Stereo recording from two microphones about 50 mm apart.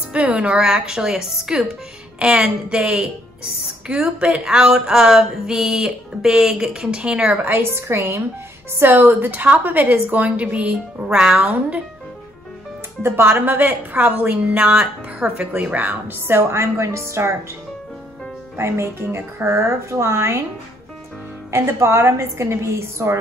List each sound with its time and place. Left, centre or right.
0.1 s a woman's voice: right
0.5 s a sound: centre
2.1 s a woman's voice: right
3.8 s a sound: right
7.4 s speech: right
8.7 s a woman's voice: right
13.1 s a woman's voice: right
15.5 s a woman's voice: right
16.3 s speech: right
18.6 s speech: right
21.5 s a woman's voice: right